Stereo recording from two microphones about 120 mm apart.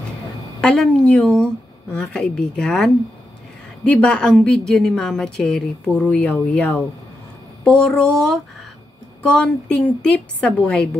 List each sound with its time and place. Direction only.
0.6 s a woman's voice: 5° left (ahead or behind)